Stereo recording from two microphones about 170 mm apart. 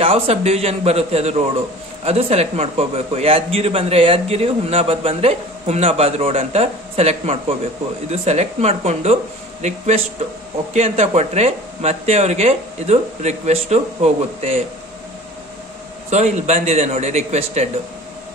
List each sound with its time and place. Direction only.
0.0 s a man's voice: 35° right (ahead or behind)
16.1 s a man's voice: 40° right (ahead or behind)